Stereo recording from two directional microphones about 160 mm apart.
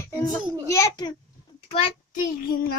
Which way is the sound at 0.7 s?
25° left (ahead or behind).